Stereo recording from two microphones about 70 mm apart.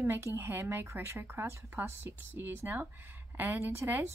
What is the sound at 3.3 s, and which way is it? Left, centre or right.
Speech, right.